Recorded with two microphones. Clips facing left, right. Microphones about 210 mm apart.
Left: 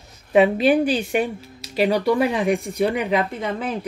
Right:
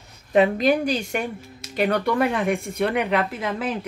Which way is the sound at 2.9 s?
65° right (ahead or behind).